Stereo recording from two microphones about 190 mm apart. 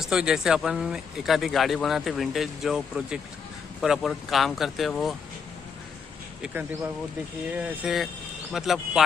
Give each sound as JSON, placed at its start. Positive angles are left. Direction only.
{"t": 0.0, "sound": "speech", "side_deg": -5}
{"t": 7.5, "sound": "speech", "side_deg": -5}